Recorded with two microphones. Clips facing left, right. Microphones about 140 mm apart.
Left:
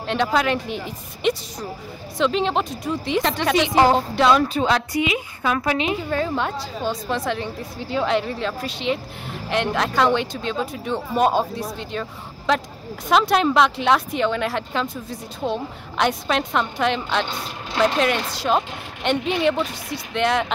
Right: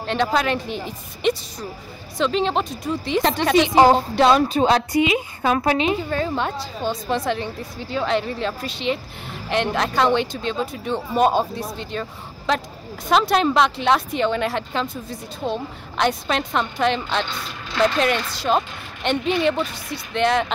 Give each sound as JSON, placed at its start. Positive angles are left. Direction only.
{"t": 0.0, "sound": "speech", "side_deg": 10}
{"t": 3.2, "sound": "a woman's voice", "side_deg": -35}
{"t": 6.0, "sound": "a woman's voice", "side_deg": 5}